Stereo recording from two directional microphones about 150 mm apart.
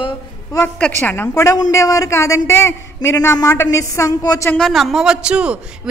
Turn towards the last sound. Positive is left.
turn(degrees=-5)  # may be behind; listen again after turning